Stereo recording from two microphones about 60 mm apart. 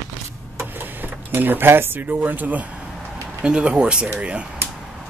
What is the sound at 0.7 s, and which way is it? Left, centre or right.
Speech, right.